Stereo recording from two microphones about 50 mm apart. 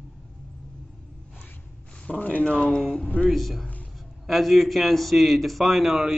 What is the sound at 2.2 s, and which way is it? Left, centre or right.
Speech, left.